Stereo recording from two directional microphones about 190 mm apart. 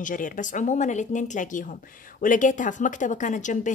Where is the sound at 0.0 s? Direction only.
45° left (ahead or behind).